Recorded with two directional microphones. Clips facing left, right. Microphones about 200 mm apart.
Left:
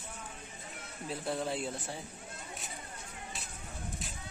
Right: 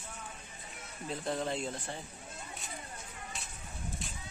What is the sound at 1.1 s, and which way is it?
Speech, 5° left (ahead or behind).